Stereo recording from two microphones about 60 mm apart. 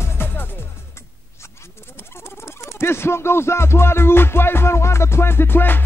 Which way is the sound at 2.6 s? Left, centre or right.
Left.